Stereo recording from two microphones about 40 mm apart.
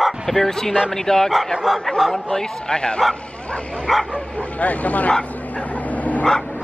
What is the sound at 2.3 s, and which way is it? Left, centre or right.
A man's voice, centre.